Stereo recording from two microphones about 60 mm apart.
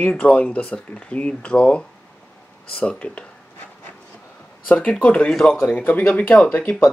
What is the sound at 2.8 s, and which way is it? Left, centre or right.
Speech, left.